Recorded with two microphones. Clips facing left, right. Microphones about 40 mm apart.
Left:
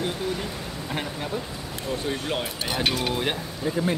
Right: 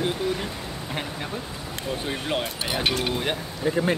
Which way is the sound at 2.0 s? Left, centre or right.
Centre.